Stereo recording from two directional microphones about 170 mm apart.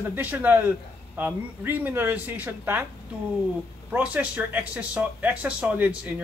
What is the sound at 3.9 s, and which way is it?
Speech, 10° right (ahead or behind).